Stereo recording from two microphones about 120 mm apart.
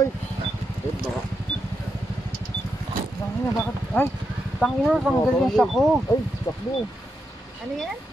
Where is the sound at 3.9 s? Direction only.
15° left (ahead or behind).